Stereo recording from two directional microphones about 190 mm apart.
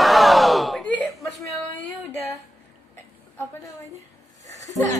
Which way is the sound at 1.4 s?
15° left (ahead or behind).